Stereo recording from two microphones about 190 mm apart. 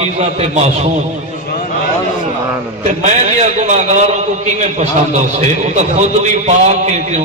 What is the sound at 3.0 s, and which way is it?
A man's voice, 40° right (ahead or behind).